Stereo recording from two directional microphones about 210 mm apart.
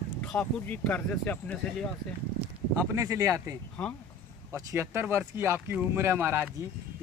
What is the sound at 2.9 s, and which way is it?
Speech, 15° right (ahead or behind).